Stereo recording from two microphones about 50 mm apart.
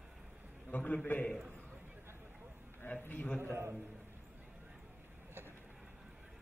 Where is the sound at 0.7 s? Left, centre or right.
Left.